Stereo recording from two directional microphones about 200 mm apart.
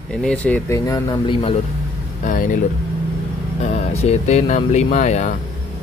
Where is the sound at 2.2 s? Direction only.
40° left (ahead or behind).